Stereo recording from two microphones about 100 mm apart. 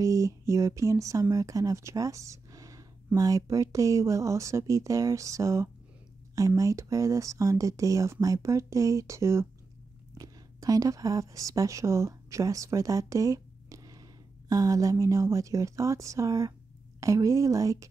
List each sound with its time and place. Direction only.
0.0 s speech: 35° right (ahead or behind)